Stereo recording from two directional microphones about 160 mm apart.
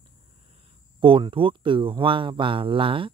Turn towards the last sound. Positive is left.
turn(degrees=-35)  # may be behind; listen again after turning